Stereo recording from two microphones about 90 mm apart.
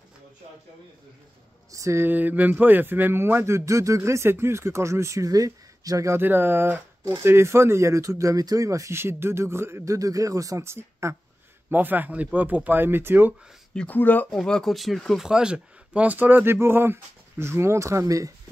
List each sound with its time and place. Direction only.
1.7 s speech: 35° right (ahead or behind)
2.0 s speech: 20° right (ahead or behind); by 6.1 s 40° right (ahead or behind)
6.1 s speech: 25° right (ahead or behind)
11.7 s speech: 20° right (ahead or behind)
13.7 s speech: 20° left (ahead or behind)
14.3 s speech: 5° left (ahead or behind); by 18.3 s 40° right (ahead or behind)